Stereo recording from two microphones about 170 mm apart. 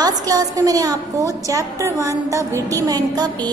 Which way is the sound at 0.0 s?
20° right (ahead or behind).